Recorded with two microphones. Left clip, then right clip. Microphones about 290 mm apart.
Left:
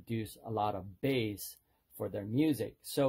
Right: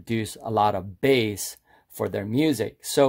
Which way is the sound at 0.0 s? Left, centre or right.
Right.